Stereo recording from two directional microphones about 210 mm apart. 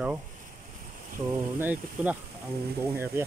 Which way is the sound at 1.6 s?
10° right (ahead or behind).